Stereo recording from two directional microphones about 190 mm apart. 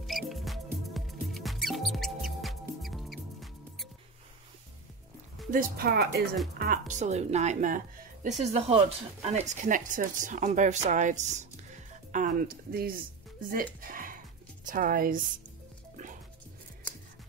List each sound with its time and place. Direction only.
0.0 s music: centre (ahead or behind)
5.5 s speech: 50° right (ahead or behind)
6.6 s a woman's voice: 45° right (ahead or behind)
8.4 s speech: 35° right (ahead or behind); by 13.0 s 50° right (ahead or behind)
13.7 s music: 45° right (ahead or behind)